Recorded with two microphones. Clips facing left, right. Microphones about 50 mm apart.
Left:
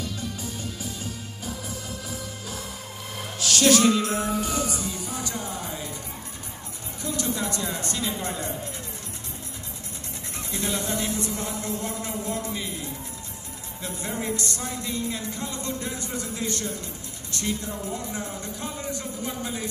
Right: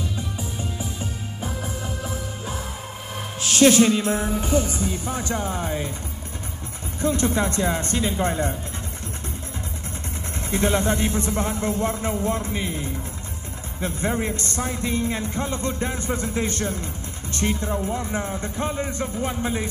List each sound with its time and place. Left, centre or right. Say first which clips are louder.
0.0 s music: right 2 dB; right
3.3 s speech: right 4 dB; right
7.0 s speech: right 7 dB; right
10.5 s speech: right 8 dB; right